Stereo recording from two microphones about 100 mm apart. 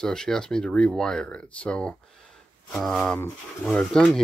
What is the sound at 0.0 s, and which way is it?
Speech, 5° left (ahead or behind).